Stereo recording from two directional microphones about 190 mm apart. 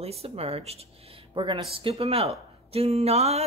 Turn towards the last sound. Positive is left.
turn(degrees=-35)  # may be behind; listen again after turning